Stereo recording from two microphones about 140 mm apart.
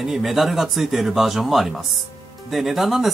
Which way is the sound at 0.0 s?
Centre (ahead or behind).